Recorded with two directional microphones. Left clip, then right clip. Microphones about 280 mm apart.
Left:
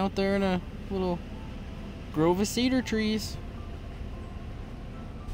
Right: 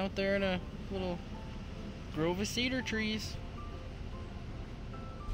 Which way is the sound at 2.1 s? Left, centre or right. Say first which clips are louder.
Left 8 dB; left.